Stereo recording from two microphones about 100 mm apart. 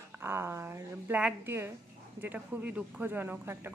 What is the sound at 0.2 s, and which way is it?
Speech, 25° right (ahead or behind).